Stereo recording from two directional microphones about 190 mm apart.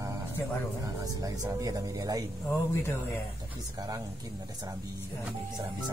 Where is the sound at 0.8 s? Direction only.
20° right (ahead or behind).